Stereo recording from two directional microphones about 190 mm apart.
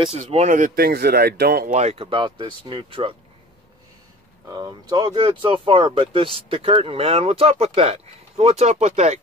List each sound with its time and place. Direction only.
0.0 s speech: 35° right (ahead or behind); by 1.7 s 55° right (ahead or behind)
1.7 s speech: 35° right (ahead or behind)
4.5 s speech: 20° right (ahead or behind); by 9.2 s 35° right (ahead or behind)